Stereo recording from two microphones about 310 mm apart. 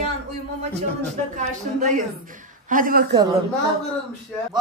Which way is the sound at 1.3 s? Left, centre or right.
Right.